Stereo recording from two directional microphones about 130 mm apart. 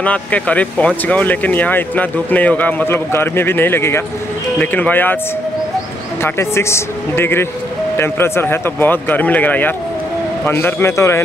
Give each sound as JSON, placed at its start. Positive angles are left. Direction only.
{"t": 0.0, "sound": "speech", "side_deg": 10}
{"t": 6.2, "sound": "a man's voice", "side_deg": 20}